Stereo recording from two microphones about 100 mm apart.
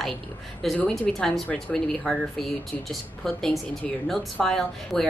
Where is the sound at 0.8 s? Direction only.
5° left (ahead or behind).